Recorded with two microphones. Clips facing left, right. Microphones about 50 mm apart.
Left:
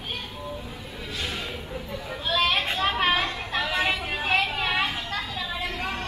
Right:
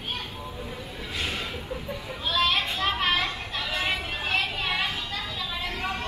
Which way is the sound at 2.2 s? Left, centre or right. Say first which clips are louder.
Left 1 dB; centre.